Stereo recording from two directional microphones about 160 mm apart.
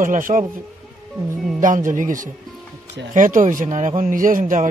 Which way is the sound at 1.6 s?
55° right (ahead or behind).